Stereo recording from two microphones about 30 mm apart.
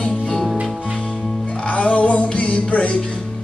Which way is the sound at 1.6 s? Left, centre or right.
Left.